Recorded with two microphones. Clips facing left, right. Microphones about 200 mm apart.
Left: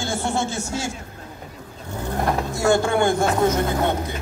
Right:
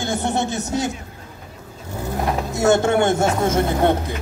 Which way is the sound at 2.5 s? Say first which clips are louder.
Right 4 dB; 20° right (ahead or behind).